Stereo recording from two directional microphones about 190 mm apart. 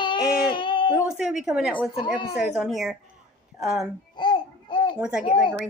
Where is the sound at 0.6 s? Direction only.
25° left (ahead or behind).